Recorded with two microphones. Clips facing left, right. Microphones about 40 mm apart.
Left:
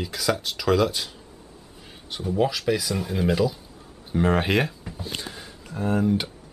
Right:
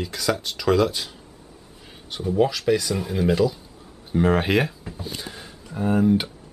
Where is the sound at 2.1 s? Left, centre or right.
Centre.